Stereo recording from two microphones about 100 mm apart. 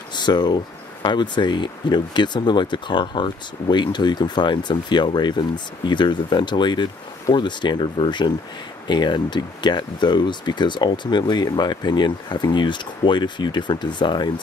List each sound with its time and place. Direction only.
0.1 s speech: 45° left (ahead or behind)